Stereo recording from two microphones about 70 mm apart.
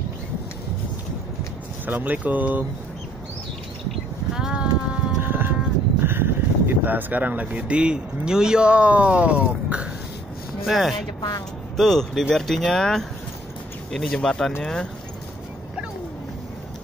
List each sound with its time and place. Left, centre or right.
1.9 s speech: right
4.4 s a sound: centre
5.2 s a sound: right
6.0 s speech: right; by 9.8 s centre
10.6 s speech: centre
11.1 s a woman's voice: left
11.7 s speech: centre